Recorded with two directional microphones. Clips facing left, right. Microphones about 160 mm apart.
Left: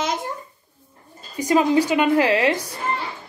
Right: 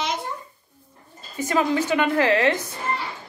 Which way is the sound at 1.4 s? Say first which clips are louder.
Left 4 dB; 15° left (ahead or behind).